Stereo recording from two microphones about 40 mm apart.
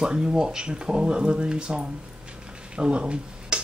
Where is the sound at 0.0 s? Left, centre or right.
Centre.